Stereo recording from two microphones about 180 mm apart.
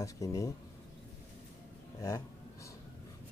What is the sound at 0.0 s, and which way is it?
Speech, 20° left (ahead or behind).